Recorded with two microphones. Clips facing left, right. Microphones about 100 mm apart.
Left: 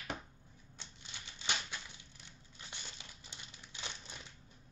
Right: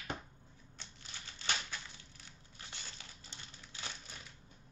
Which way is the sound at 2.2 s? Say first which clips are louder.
Even; 20° left (ahead or behind).